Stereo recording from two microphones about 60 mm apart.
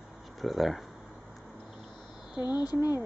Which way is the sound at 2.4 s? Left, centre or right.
Left.